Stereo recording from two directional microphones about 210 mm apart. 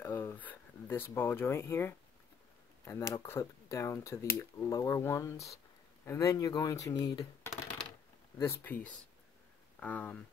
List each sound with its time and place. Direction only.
0.0 s speech: 10° left (ahead or behind)